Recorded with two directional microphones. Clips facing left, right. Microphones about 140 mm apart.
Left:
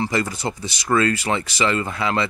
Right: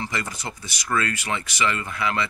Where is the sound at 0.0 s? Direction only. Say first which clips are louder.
Left 7 dB; 30° left (ahead or behind).